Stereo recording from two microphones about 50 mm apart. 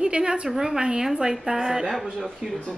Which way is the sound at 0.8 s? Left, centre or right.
Centre.